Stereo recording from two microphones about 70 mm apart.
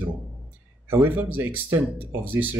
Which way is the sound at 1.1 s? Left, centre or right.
Right.